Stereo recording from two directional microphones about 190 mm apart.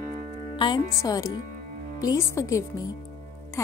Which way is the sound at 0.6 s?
20° left (ahead or behind).